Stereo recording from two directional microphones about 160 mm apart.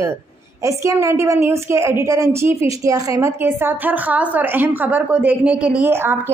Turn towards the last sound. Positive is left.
turn(degrees=-15)  # may be behind; listen again after turning